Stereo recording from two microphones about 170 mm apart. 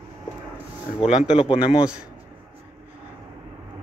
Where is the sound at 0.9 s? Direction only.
35° left (ahead or behind).